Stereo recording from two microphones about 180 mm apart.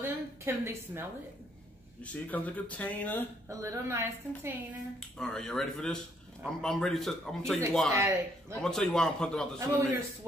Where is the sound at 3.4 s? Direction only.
15° right (ahead or behind).